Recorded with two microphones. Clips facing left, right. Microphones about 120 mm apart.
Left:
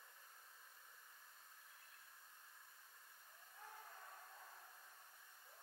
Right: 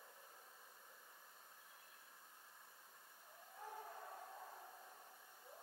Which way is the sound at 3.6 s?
30° right (ahead or behind).